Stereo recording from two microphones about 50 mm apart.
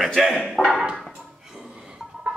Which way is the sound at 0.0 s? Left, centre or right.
Centre.